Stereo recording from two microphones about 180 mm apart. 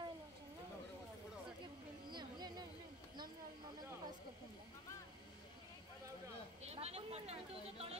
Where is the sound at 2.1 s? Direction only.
25° right (ahead or behind).